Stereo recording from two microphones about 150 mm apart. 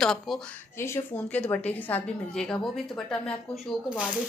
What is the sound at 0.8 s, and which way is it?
A woman's voice, 15° left (ahead or behind).